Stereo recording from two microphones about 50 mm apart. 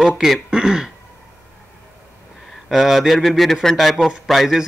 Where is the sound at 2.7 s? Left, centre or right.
Centre.